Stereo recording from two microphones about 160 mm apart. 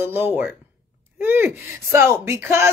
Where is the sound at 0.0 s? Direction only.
10° right (ahead or behind).